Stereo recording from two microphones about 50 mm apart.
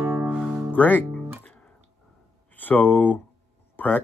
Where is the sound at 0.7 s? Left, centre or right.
Left.